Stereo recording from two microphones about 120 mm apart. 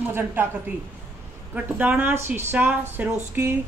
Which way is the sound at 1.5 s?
15° right (ahead or behind).